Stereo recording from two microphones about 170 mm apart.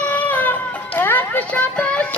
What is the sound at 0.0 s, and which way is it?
Music, 10° left (ahead or behind).